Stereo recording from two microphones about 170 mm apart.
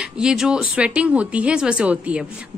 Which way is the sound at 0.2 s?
5° right (ahead or behind).